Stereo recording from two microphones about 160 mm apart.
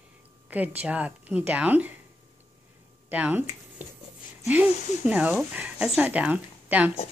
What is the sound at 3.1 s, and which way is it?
Speech, 10° right (ahead or behind).